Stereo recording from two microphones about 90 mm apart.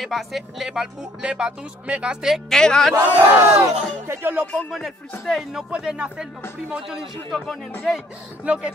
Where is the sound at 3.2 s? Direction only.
30° right (ahead or behind).